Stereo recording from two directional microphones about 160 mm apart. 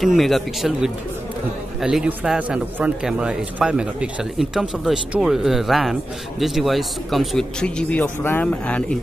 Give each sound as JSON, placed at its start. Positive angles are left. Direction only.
{"t": 0.0, "sound": "a man's voice", "side_deg": 0}